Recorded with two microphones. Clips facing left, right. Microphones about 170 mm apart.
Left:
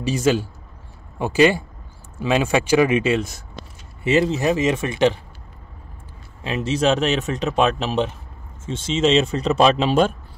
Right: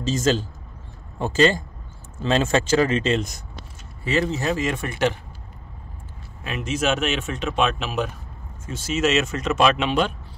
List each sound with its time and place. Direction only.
0.0 s speech: 10° left (ahead or behind)
4.0 s speech: 20° left (ahead or behind)
6.4 s speech: 30° left (ahead or behind)